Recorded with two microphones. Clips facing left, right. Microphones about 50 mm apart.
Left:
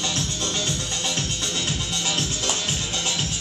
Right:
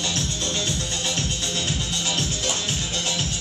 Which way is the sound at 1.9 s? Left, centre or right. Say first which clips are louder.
Even; centre.